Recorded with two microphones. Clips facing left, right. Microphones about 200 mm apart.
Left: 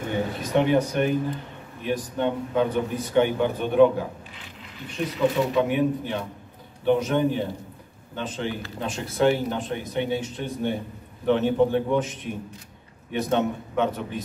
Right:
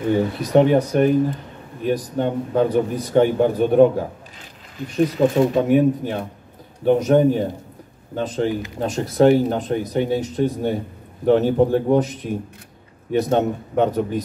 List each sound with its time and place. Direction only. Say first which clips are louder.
0.4 s a man's voice: right 4 dB; 40° right (ahead or behind)